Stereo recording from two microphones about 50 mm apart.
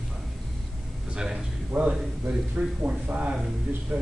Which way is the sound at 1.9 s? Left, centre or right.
Centre.